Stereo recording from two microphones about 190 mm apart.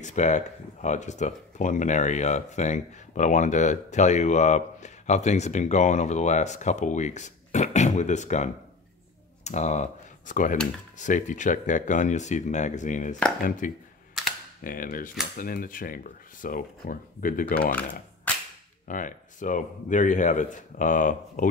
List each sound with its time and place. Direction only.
0.0 s speech: 40° left (ahead or behind)
18.9 s speech: 45° left (ahead or behind)